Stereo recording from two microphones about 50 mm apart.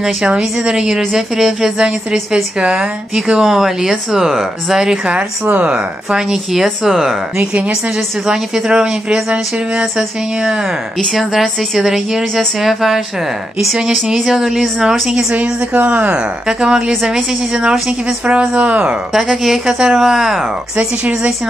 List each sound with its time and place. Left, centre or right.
0.0 s speech: centre
7.3 s speech: right
8.3 s speech: centre
11.7 s speech: centre
14.0 s speech: centre
15.7 s speech: right
16.4 s speech: centre
18.2 s speech: right
19.1 s speech: centre